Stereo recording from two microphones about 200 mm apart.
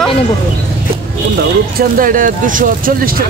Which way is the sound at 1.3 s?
45° right (ahead or behind).